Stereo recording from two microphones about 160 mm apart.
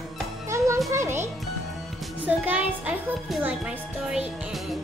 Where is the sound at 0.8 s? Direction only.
15° right (ahead or behind).